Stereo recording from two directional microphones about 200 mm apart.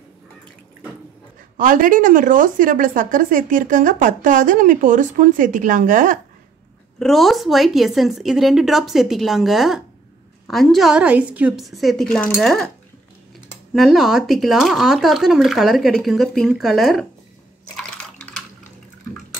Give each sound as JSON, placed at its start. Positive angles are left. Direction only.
{"t": 1.6, "sound": "speech", "side_deg": -45}
{"t": 7.0, "sound": "speech", "side_deg": 0}
{"t": 13.7, "sound": "speech", "side_deg": 0}